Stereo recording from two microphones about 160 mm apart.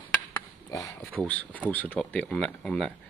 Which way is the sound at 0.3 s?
15° left (ahead or behind).